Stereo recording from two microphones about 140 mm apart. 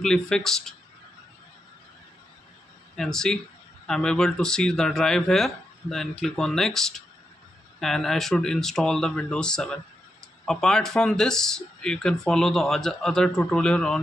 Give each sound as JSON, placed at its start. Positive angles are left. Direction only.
{"t": 0.0, "sound": "speech", "side_deg": 5}
{"t": 3.0, "sound": "speech", "side_deg": 5}